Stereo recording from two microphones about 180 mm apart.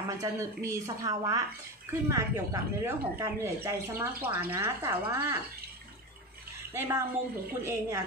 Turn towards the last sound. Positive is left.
turn(degrees=-15)  # may be behind; listen again after turning